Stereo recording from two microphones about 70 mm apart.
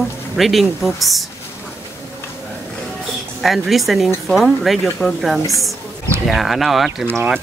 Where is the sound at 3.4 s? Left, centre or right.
Centre.